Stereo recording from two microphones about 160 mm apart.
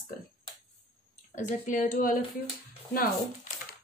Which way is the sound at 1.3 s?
50° left (ahead or behind).